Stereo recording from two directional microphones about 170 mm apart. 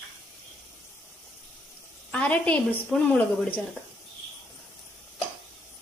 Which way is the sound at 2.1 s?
10° left (ahead or behind).